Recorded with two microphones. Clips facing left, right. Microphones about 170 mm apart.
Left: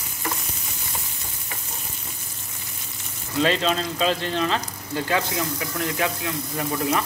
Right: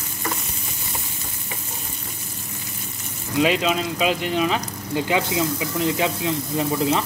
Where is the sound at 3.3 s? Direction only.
10° right (ahead or behind).